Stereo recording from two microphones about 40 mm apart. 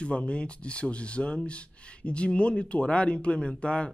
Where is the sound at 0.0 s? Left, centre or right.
Left.